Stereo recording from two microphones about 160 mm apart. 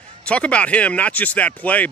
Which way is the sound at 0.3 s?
5° left (ahead or behind).